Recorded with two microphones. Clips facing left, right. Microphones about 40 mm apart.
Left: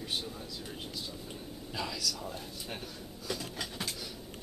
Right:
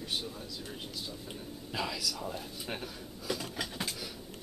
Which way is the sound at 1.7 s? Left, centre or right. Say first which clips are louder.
Right 1 dB; centre.